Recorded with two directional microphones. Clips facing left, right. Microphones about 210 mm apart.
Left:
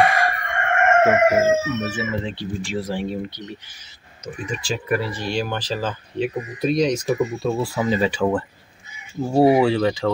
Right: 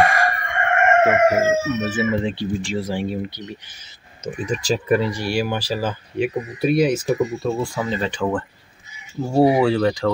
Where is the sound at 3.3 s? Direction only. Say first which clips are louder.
Right 1 dB; 20° right (ahead or behind).